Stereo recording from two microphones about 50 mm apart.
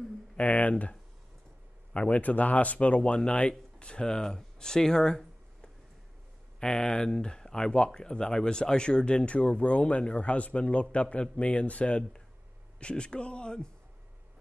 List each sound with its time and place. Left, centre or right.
0.4 s speech: left
2.0 s speech: left